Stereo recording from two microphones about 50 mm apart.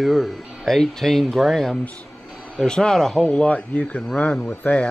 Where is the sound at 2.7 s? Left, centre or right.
Centre.